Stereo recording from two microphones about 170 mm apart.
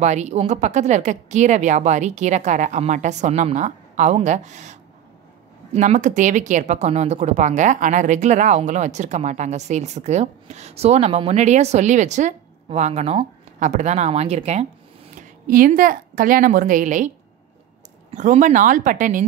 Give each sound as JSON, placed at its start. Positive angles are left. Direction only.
{"t": 0.0, "sound": "speech", "side_deg": -40}
{"t": 15.1, "sound": "a woman's voice", "side_deg": -55}
{"t": 18.1, "sound": "speech", "side_deg": -45}